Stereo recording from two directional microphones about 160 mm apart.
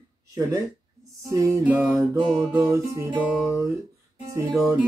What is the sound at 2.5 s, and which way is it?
Speech, 20° right (ahead or behind).